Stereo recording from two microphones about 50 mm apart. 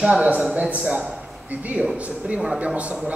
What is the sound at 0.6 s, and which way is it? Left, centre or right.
A man's voice, right.